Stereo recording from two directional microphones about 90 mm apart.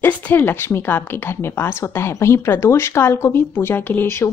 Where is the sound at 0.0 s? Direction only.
20° left (ahead or behind).